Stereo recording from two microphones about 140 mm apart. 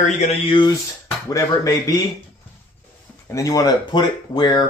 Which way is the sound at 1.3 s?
25° left (ahead or behind).